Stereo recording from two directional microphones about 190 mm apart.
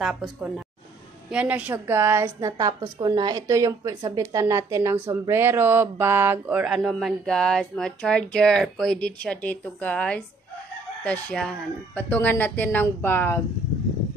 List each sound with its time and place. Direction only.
0.0 s a woman's voice: centre (ahead or behind)